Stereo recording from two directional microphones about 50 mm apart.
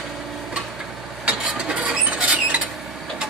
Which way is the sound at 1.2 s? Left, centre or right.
Right.